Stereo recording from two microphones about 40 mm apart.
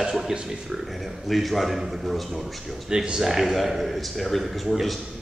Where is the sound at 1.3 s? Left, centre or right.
Centre.